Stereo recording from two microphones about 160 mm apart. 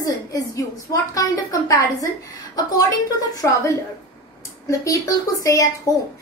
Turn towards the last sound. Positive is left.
turn(degrees=25)  # may be behind; listen again after turning